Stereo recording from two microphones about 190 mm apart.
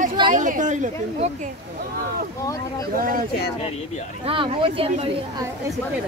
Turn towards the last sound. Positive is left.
turn(degrees=-30)  # may be behind; listen again after turning